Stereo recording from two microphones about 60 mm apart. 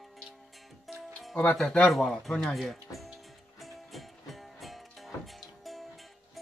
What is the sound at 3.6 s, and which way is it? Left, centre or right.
Music, centre.